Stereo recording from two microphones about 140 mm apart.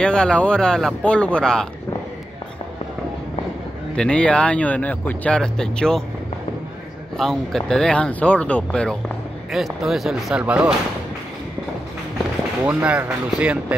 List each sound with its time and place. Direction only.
0.0 s speech: 5° left (ahead or behind)
3.9 s speech: 5° left (ahead or behind)
7.2 s speech: centre (ahead or behind)
12.6 s speech: 10° right (ahead or behind)